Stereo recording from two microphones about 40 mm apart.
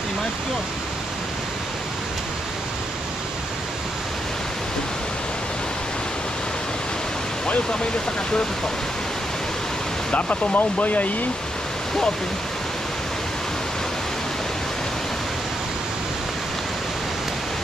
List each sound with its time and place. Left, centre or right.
10.1 s speech: left